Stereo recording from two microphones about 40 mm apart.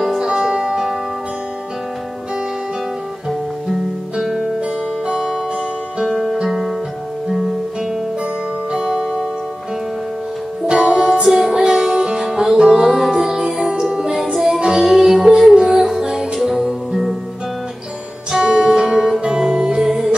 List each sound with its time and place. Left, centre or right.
0.0 s music: centre
4.2 s music: centre
6.0 s guitar: centre
6.3 s guitar: centre
8.7 s music: centre
10.7 s music: right
11.2 s music: centre
11.5 s music: centre
12.8 s music: centre
18.3 s music: centre